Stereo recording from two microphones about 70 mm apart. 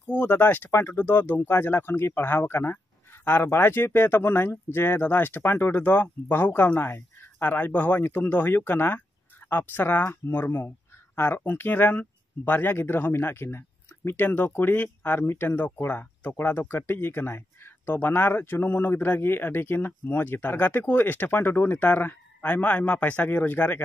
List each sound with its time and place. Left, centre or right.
0.0 s speech: left